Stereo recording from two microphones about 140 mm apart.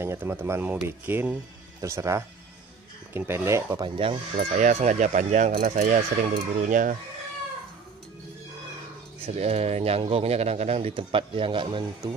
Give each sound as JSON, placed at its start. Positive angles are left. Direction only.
{"t": 0.0, "sound": "speech", "side_deg": -15}
{"t": 3.8, "sound": "speech", "side_deg": -35}
{"t": 4.6, "sound": "speech", "side_deg": -60}
{"t": 6.6, "sound": "speech", "side_deg": -75}
{"t": 9.2, "sound": "speech", "side_deg": -50}